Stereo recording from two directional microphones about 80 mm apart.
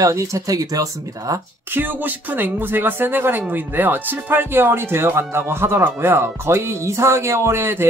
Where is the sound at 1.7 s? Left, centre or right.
Right.